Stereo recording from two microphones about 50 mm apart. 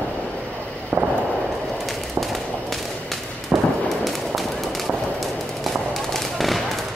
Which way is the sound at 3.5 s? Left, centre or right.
Right.